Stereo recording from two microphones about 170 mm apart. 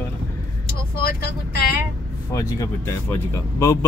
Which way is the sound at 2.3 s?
15° left (ahead or behind).